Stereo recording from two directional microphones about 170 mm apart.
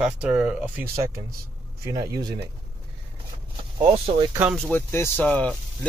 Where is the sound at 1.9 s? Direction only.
20° right (ahead or behind).